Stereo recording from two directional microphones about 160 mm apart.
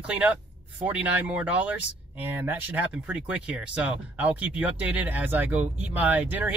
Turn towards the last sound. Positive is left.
turn(degrees=-10)  # may be behind; listen again after turning